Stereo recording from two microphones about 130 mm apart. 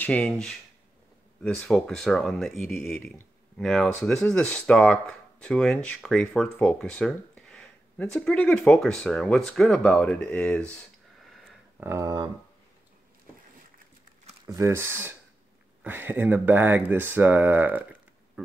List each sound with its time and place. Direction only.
0.0 s speech: 10° left (ahead or behind)
11.8 s speech: 25° right (ahead or behind)
14.5 s speech: 20° right (ahead or behind)